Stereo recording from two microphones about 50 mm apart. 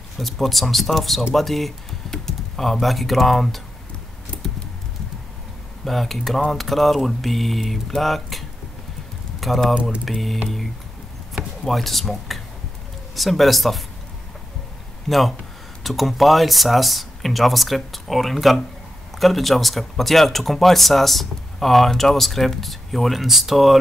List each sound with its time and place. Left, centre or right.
0.2 s speech: centre
4.3 s computer keyboard: left
5.9 s speech: centre
11.6 s speech: centre
15.0 s speech: centre